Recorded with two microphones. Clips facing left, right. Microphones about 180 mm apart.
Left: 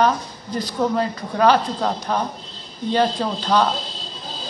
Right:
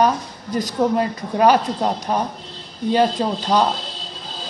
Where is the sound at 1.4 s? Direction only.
15° right (ahead or behind).